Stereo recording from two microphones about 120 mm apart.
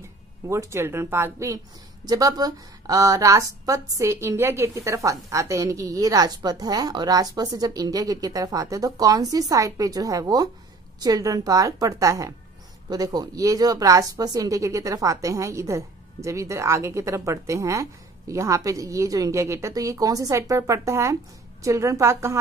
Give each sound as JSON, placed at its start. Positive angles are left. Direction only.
{"t": 0.5, "sound": "a woman's voice", "side_deg": -25}